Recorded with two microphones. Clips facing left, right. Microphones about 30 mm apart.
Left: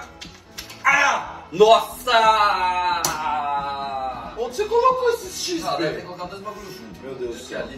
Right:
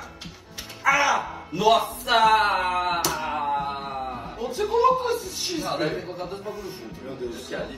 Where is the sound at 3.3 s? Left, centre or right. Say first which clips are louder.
Left 2 dB; centre.